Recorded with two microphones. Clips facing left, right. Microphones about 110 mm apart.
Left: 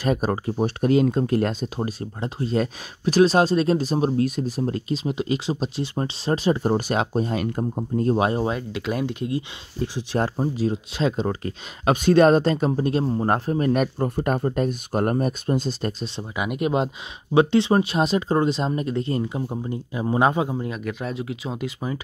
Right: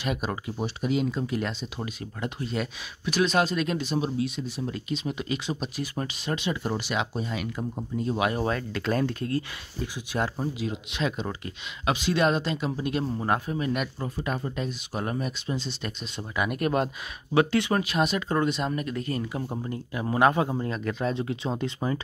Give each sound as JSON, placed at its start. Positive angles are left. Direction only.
{"t": 0.0, "sound": "speech", "side_deg": 40}
{"t": 8.2, "sound": "speech", "side_deg": 30}
{"t": 8.5, "sound": "speech", "side_deg": 15}
{"t": 9.8, "sound": "speech", "side_deg": 35}
{"t": 16.2, "sound": "speech", "side_deg": 20}